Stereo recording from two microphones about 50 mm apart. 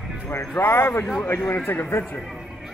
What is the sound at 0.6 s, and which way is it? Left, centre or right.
Speech, left.